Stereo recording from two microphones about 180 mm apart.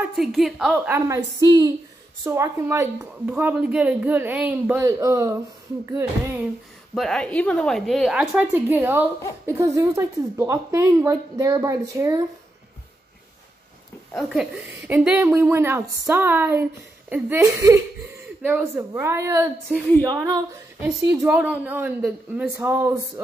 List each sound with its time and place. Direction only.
0.0 s a woman's voice: centre (ahead or behind)
0.9 s a woman's voice: 15° right (ahead or behind)
7.0 s a woman's voice: 5° left (ahead or behind); by 12.2 s 20° right (ahead or behind)
14.1 s a woman's voice: 5° right (ahead or behind)